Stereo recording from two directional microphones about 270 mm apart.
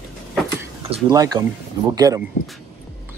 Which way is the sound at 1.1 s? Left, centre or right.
Centre.